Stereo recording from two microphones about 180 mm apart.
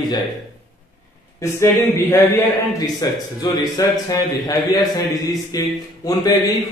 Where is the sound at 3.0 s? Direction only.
20° left (ahead or behind).